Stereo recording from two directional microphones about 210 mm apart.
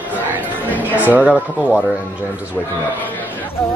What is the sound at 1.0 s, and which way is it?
Speech, 10° right (ahead or behind).